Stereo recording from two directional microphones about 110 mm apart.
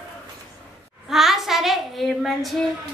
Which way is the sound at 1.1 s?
Centre (ahead or behind).